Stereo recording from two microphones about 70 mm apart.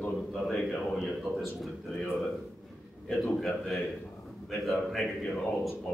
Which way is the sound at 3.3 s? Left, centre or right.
Centre.